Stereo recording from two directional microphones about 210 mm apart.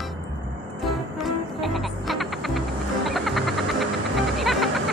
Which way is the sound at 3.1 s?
Centre (ahead or behind).